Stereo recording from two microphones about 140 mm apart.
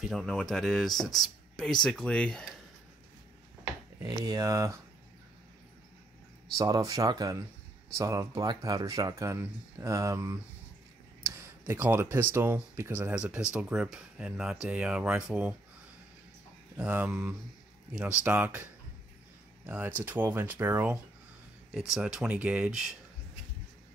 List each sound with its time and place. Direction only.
0.0 s speech: centre (ahead or behind)
4.0 s speech: 25° right (ahead or behind)
6.6 s speech: 25° right (ahead or behind); by 15.5 s 10° right (ahead or behind)
16.7 s speech: 10° right (ahead or behind)
21.7 s speech: 5° right (ahead or behind)